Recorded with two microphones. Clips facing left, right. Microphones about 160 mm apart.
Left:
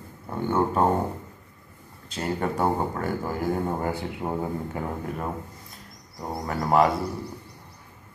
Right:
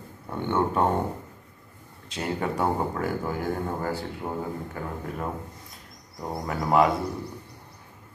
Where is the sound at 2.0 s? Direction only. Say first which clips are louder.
Left 1 dB; centre (ahead or behind).